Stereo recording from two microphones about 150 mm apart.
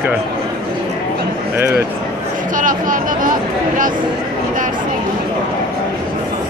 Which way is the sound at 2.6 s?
65° right (ahead or behind).